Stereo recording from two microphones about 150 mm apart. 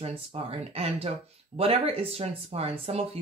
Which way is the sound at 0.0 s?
40° right (ahead or behind).